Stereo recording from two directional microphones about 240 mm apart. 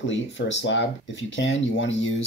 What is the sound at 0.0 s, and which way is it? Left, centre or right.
Speech, left.